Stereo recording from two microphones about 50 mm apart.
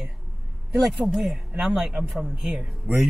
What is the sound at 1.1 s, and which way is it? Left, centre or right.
Speech, centre.